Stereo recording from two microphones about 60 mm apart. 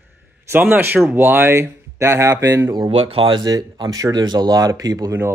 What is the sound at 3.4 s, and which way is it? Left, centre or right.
Speech, right.